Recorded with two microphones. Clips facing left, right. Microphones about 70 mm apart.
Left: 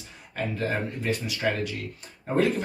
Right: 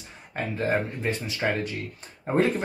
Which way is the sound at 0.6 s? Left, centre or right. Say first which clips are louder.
Right 5 dB; right.